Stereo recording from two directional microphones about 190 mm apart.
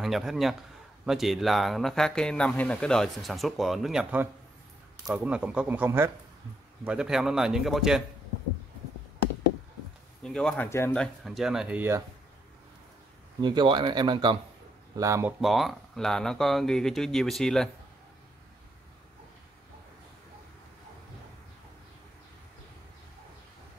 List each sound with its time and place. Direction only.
0.0 s a man's voice: centre (ahead or behind)
10.2 s speech: 5° left (ahead or behind)
13.4 s a man's voice: 25° right (ahead or behind)
15.4 s speech: centre (ahead or behind)